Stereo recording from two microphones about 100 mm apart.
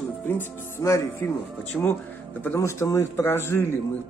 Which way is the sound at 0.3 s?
25° left (ahead or behind).